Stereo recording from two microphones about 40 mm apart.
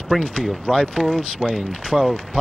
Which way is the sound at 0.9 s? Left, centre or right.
Centre.